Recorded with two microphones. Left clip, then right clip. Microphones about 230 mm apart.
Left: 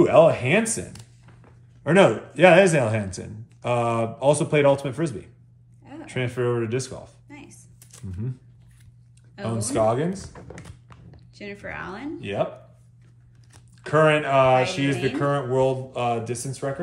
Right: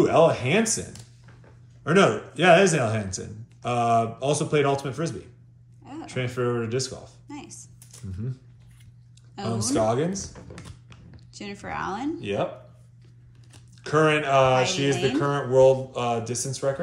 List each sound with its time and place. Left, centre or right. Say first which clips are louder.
0.0 s speech: left 3 dB; left
1.9 s speech: left 3 dB; left
7.2 s a sound: right 4 dB; centre
9.4 s speech: left 2 dB; left
11.3 s a woman's voice: right 1 dB; centre
12.2 s speech: left 4 dB; left
13.8 s speech: left 2 dB; left